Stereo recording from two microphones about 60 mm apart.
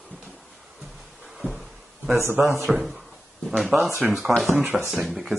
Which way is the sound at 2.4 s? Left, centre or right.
Right.